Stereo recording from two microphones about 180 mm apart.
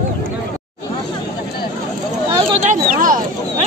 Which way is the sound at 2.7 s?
45° right (ahead or behind).